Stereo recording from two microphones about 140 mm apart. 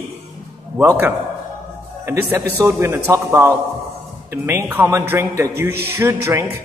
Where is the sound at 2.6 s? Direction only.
20° right (ahead or behind).